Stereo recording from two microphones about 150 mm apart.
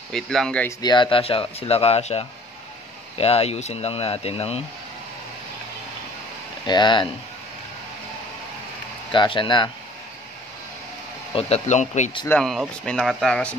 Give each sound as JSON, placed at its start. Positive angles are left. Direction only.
{"t": 0.1, "sound": "speech", "side_deg": 0}
{"t": 0.7, "sound": "speech", "side_deg": 30}
{"t": 6.6, "sound": "speech", "side_deg": 30}
{"t": 9.1, "sound": "speech", "side_deg": 35}
{"t": 11.3, "sound": "speech", "side_deg": 45}
{"t": 12.4, "sound": "speech", "side_deg": 0}